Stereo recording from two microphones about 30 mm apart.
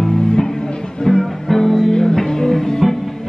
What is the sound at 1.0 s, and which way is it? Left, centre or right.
Music, centre.